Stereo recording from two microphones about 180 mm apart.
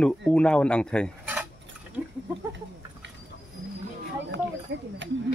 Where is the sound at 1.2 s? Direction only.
10° right (ahead or behind).